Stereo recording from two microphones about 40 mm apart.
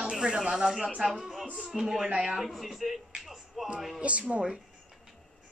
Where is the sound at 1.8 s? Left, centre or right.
Centre.